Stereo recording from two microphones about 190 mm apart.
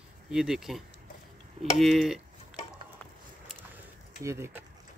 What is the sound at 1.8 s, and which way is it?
Speech, centre (ahead or behind).